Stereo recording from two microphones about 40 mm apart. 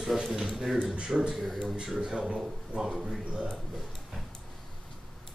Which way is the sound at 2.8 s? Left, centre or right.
Centre.